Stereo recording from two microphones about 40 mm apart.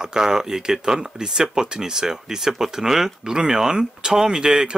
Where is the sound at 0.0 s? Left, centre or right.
Centre.